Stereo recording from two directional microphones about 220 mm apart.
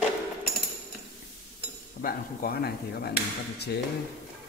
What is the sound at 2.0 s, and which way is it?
A man's voice, 40° left (ahead or behind).